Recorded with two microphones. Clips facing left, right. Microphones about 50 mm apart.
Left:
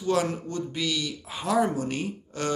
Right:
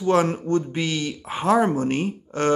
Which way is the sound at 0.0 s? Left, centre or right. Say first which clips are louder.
Right 6 dB; right.